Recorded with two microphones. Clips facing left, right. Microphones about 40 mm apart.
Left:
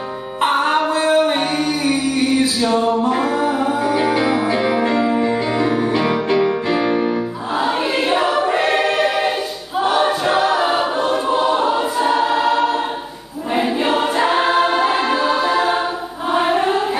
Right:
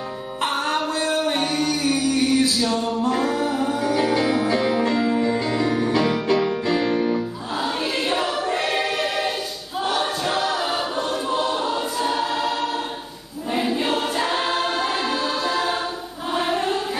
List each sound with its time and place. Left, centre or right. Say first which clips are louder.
0.4 s music: left 7 dB; left
9.8 s choir: left 7 dB; centre
16.3 s chant: left 6 dB; centre